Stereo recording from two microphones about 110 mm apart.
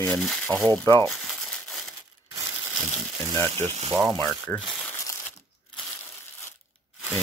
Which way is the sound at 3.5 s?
75° right (ahead or behind).